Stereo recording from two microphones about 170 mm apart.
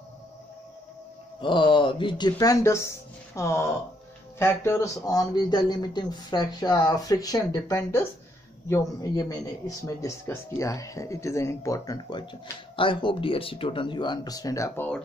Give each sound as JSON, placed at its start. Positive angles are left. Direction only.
{"t": 1.4, "sound": "a man's voice", "side_deg": 30}